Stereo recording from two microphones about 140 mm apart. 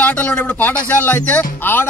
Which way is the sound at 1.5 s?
15° left (ahead or behind).